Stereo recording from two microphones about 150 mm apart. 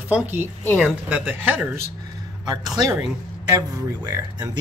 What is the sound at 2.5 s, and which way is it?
Speech, 25° right (ahead or behind).